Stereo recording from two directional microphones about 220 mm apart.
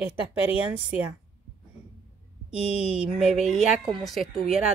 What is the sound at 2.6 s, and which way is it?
Speech, 25° left (ahead or behind).